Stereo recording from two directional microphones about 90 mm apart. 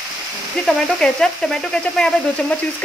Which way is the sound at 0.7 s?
5° left (ahead or behind).